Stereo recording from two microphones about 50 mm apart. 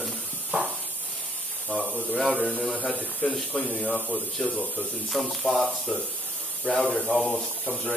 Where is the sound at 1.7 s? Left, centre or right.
Left.